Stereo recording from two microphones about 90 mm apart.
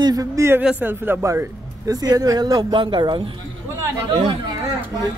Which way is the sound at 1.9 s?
45° right (ahead or behind).